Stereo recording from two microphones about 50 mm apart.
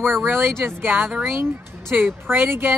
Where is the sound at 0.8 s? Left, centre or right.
Right.